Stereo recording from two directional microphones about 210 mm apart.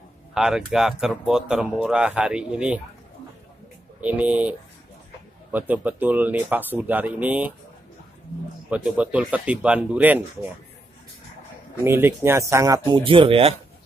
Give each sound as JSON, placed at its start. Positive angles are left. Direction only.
{"t": 0.3, "sound": "speech", "side_deg": -5}
{"t": 4.0, "sound": "speech", "side_deg": -5}
{"t": 8.6, "sound": "speech", "side_deg": -5}
{"t": 11.8, "sound": "speech", "side_deg": -10}